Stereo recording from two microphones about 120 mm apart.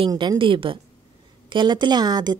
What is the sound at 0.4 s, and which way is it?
A woman's voice, 45° right (ahead or behind).